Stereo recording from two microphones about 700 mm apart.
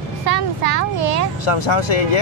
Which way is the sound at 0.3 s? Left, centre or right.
Right.